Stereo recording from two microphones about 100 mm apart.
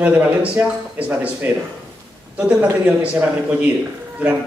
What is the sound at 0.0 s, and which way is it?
A man's voice, 15° right (ahead or behind).